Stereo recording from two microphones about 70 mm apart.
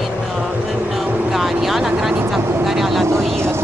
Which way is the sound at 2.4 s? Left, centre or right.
Right.